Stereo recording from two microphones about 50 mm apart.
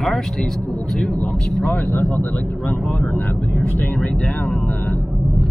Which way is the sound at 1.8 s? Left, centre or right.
Left.